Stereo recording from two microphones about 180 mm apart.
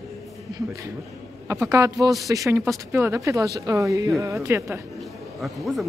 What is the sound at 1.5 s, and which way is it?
Speech, 15° right (ahead or behind).